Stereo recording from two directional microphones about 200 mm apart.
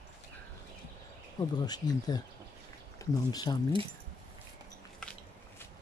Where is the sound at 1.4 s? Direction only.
20° left (ahead or behind).